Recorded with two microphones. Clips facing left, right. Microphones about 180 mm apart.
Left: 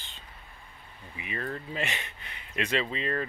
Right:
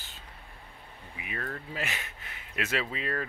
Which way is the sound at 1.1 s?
Centre (ahead or behind).